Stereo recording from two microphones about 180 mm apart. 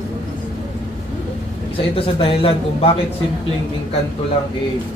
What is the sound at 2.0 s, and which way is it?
Speech, 30° left (ahead or behind).